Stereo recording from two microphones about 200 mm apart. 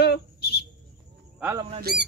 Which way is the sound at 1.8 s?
50° right (ahead or behind).